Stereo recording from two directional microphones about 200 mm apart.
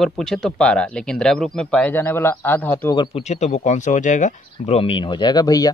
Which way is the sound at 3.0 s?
30° left (ahead or behind).